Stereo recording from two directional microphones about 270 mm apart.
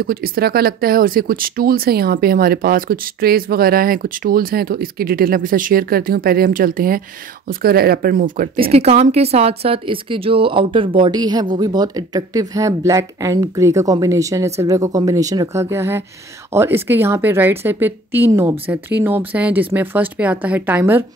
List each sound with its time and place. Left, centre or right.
0.0 s speech: right; by 21.0 s centre